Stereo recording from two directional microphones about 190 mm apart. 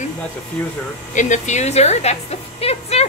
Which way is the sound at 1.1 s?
40° left (ahead or behind).